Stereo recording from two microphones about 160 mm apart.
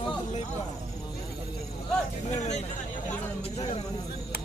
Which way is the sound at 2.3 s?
45° left (ahead or behind).